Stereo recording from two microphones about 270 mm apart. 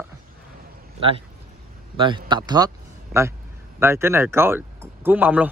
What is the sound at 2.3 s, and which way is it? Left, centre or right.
Speech, centre.